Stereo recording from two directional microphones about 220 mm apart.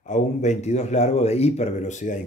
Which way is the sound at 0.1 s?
30° left (ahead or behind).